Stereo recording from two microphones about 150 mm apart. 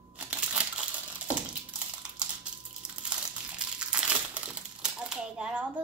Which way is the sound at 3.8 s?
5° right (ahead or behind).